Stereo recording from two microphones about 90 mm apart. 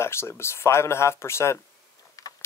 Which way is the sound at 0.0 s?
30° left (ahead or behind).